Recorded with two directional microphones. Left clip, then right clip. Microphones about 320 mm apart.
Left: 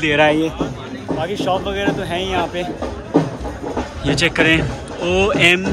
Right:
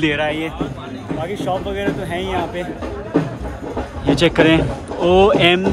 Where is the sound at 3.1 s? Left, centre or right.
Left.